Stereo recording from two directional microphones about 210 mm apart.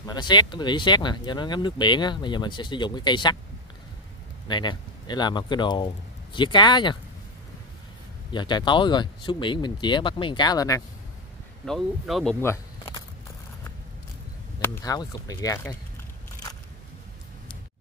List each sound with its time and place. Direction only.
0.0 s speech: 20° left (ahead or behind)
4.5 s speech: 20° left (ahead or behind)
8.3 s speech: 20° left (ahead or behind)
11.6 s speech: centre (ahead or behind)
12.4 s a sound: 10° left (ahead or behind)
14.6 s speech: 15° left (ahead or behind)